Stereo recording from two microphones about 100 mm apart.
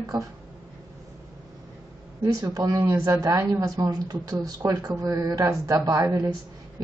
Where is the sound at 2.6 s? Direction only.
50° right (ahead or behind).